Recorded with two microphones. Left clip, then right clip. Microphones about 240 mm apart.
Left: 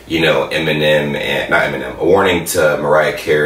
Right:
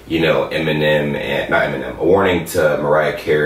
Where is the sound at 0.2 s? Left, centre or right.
Centre.